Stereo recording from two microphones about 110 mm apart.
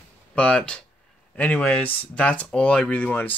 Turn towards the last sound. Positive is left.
turn(degrees=15)  # may be behind; listen again after turning